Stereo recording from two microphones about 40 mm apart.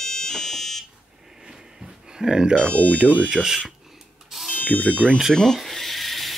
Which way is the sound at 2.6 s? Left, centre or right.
Left.